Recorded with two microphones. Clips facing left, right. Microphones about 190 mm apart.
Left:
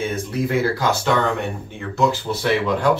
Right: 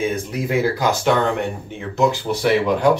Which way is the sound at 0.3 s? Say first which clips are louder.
Left 3 dB; 15° right (ahead or behind).